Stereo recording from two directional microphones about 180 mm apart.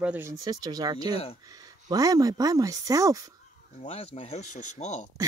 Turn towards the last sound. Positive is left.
turn(degrees=40)  # may be behind; listen again after turning